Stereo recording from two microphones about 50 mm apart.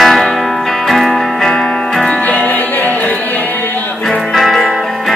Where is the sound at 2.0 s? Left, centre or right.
Left.